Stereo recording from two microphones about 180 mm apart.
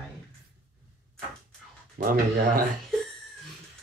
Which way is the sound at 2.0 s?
50° right (ahead or behind).